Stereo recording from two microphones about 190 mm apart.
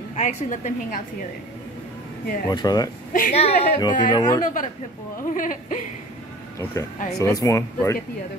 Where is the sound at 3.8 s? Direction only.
20° left (ahead or behind).